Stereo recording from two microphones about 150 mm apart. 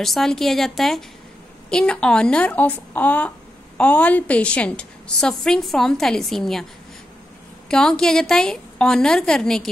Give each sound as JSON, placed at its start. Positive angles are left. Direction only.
{"t": 0.0, "sound": "speech", "side_deg": 0}
{"t": 7.6, "sound": "speech", "side_deg": 5}